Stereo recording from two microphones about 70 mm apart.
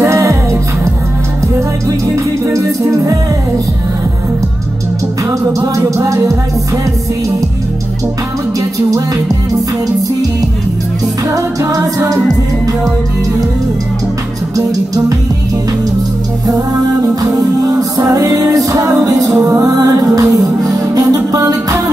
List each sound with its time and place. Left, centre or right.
0.0 s music: right
2.5 s music: right
6.0 s music: right
11.3 s music: right
17.1 s music: right